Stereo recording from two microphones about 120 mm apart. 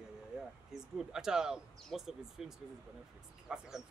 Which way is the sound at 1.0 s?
5° right (ahead or behind).